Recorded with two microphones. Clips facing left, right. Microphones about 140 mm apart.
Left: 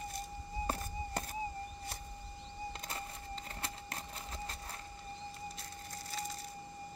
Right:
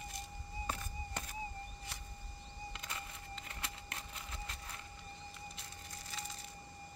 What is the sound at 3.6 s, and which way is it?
Engine, 40° left (ahead or behind).